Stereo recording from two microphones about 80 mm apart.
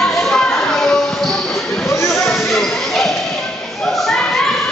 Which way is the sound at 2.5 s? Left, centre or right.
Centre.